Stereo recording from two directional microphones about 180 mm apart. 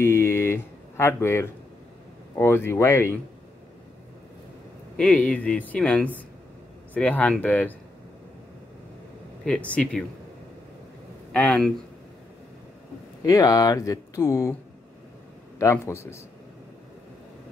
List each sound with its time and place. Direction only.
0.0 s a sound: 15° left (ahead or behind)
2.3 s speech: 15° left (ahead or behind)
4.9 s speech: 5° left (ahead or behind)
9.4 s speech: 5° left (ahead or behind)
11.3 s speech: 5° left (ahead or behind)
13.2 s speech: 20° left (ahead or behind)
15.6 s speech: 15° left (ahead or behind)